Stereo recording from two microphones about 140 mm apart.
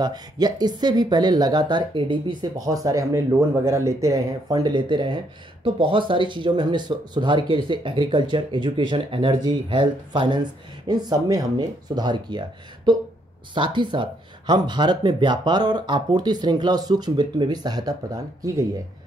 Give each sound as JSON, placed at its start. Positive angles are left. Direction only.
{"t": 0.0, "sound": "speech", "side_deg": -30}